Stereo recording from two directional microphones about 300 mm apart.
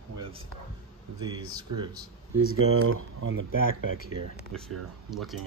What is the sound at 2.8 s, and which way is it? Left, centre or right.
Speech, right.